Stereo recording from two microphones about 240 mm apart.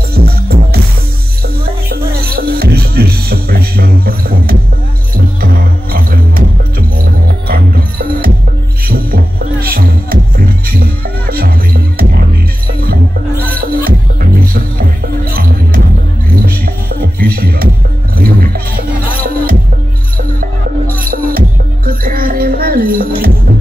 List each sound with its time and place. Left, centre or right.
0.1 s music: right
13.6 s music: right
20.2 s music: right